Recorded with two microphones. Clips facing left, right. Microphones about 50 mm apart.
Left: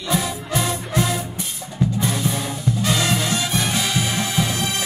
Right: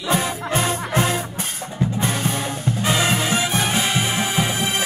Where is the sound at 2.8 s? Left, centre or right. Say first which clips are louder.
Right 2 dB; right.